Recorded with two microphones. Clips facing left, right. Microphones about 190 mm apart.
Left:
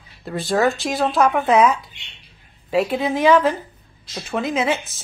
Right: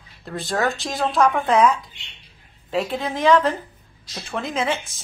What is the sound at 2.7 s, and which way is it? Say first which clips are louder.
A woman's voice: left 5 dB; 10° left (ahead or behind).